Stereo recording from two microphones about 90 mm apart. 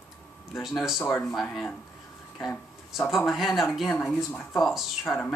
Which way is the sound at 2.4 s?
5° left (ahead or behind).